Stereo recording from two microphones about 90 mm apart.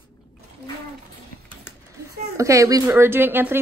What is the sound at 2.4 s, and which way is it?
Speech, 35° right (ahead or behind).